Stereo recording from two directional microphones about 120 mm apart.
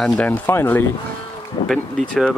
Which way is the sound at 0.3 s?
20° left (ahead or behind).